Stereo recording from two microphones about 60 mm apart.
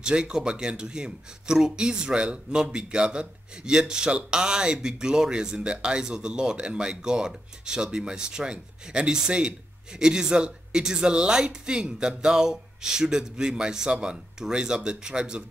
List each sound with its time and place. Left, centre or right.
0.0 s speech: centre